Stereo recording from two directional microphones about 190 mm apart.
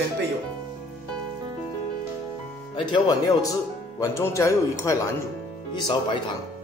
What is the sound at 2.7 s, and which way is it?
Speech, 20° left (ahead or behind).